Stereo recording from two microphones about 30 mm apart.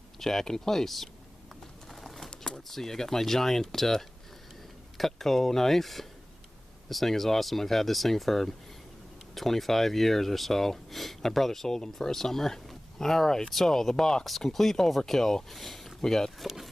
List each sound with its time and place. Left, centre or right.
0.2 s speech: centre
1.9 s bird: centre
2.3 s a sound: left
2.7 s speech: centre
16.0 s speech: centre